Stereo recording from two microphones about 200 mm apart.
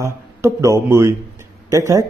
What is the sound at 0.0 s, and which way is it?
A man's voice, 15° right (ahead or behind).